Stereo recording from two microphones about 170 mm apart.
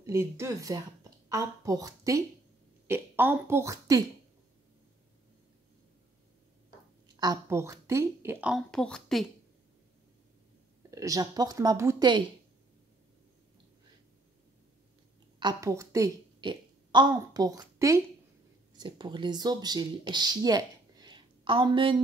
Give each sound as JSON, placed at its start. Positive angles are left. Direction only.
{"t": 0.0, "sound": "a woman's voice", "side_deg": -15}
{"t": 7.2, "sound": "a woman's voice", "side_deg": -20}
{"t": 10.9, "sound": "speech", "side_deg": -20}
{"t": 15.3, "sound": "a woman's voice", "side_deg": -20}